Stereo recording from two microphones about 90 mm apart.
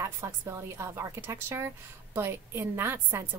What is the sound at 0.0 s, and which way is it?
A woman's voice, 30° right (ahead or behind).